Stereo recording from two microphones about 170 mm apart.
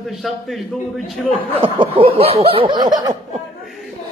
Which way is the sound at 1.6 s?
30° right (ahead or behind).